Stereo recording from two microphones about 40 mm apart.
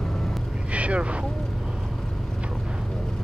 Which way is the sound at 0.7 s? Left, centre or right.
Right.